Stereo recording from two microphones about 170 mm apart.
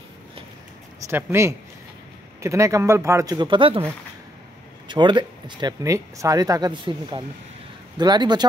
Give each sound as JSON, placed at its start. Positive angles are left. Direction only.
{"t": 1.0, "sound": "speech", "side_deg": -15}
{"t": 4.8, "sound": "speech", "side_deg": -25}